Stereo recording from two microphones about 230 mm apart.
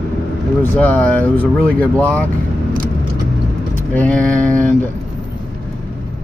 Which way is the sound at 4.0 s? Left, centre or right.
Centre.